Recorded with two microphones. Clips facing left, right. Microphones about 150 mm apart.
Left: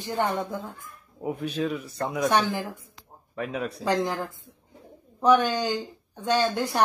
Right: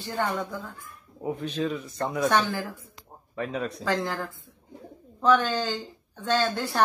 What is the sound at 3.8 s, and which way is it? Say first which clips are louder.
A woman's voice: left 4 dB; 20° left (ahead or behind).